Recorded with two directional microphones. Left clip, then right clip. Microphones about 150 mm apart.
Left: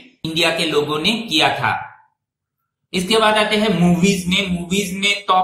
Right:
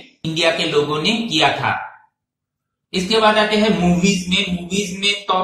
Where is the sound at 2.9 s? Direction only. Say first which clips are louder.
Even; 15° left (ahead or behind).